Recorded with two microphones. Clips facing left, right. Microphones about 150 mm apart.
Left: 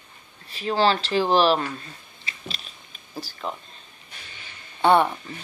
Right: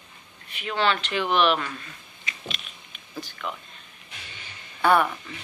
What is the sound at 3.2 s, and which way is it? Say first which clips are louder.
Speech: left 2 dB; 35° left (ahead or behind).